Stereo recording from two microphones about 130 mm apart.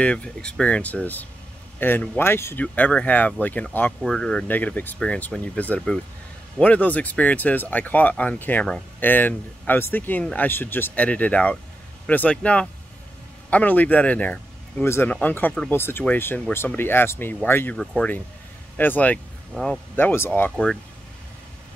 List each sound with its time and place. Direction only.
0.0 s speech: 10° left (ahead or behind)
20.0 s speech: 15° left (ahead or behind)
20.5 s speech: centre (ahead or behind)